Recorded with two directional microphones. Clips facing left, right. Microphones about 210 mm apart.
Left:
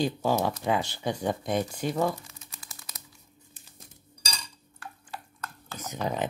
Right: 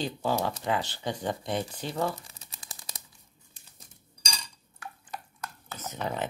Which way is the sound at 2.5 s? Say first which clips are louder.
Right 5 dB; 30° right (ahead or behind).